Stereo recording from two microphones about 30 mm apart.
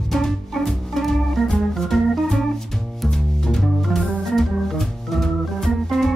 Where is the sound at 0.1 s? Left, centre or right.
Centre.